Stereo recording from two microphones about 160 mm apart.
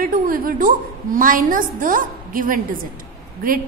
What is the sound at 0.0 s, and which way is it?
A woman's voice, 60° right (ahead or behind).